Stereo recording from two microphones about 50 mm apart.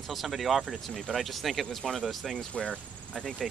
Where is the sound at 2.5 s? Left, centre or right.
Centre.